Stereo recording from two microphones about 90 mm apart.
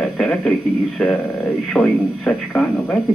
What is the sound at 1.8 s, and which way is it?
Speech, 10° left (ahead or behind).